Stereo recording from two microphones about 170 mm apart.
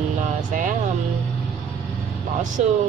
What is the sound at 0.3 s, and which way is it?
Vehicle, 50° right (ahead or behind).